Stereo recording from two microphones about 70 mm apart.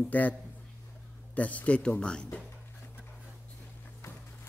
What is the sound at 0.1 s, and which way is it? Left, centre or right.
Speech, left.